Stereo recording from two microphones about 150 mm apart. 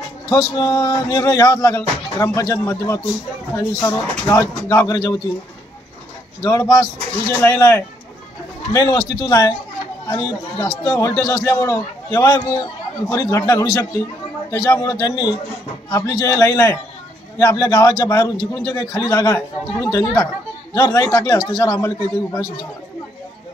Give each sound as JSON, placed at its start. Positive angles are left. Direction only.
{"t": 0.3, "sound": "speech", "side_deg": 25}
{"t": 6.4, "sound": "speech", "side_deg": 25}